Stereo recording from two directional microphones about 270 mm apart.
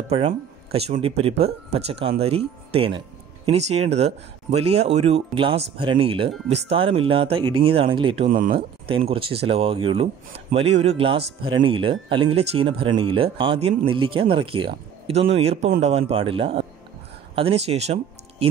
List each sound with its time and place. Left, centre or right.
0.1 s speech: right
7.4 s speech: right
7.7 s speech: centre
8.3 s speech: right
8.8 s speech: right